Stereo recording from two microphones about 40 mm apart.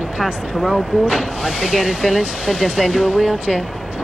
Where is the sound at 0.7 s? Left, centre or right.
Centre.